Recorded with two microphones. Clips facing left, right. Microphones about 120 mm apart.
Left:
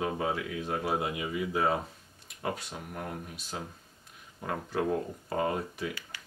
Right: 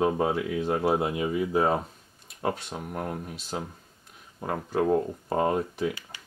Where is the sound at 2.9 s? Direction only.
35° right (ahead or behind).